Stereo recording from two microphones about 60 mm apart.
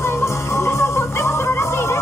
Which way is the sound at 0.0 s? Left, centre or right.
Left.